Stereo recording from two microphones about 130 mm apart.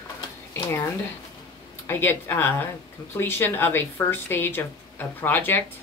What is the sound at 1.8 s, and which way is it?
Speech, 20° left (ahead or behind).